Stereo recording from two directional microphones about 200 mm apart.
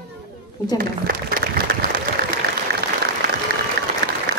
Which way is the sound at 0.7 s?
45° right (ahead or behind).